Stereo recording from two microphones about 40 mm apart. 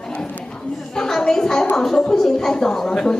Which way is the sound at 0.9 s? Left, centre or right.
Centre.